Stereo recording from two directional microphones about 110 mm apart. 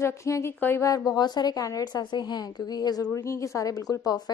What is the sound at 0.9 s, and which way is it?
A woman's voice, 35° left (ahead or behind).